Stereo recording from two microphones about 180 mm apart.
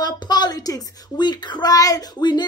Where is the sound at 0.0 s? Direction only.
25° left (ahead or behind).